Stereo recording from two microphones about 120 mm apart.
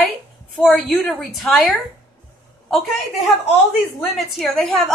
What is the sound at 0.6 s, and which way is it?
A woman's voice, centre (ahead or behind).